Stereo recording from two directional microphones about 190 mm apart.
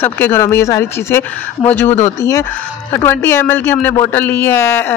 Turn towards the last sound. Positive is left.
turn(degrees=15)  # may be behind; listen again after turning